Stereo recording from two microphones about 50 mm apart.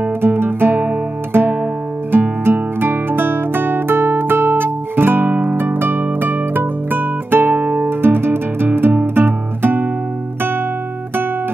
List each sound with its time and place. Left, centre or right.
0.2 s music: right
8.0 s music: right